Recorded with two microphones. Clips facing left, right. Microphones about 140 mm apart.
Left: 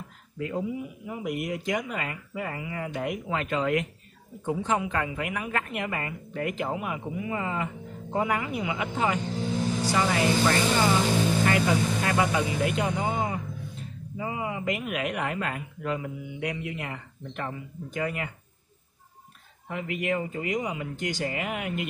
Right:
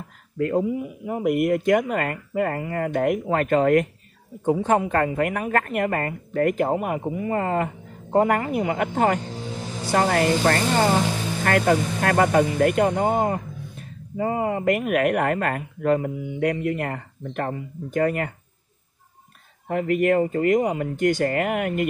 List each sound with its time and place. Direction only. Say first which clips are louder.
0.4 s a woman's voice: right 8 dB; 50° right (ahead or behind)
19.7 s a woman's voice: right 9 dB; 50° right (ahead or behind)